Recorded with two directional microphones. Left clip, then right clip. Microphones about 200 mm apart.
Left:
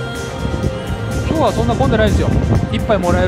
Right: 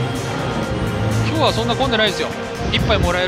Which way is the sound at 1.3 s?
40° left (ahead or behind).